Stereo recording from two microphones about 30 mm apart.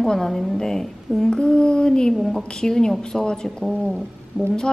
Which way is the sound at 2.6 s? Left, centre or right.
Centre.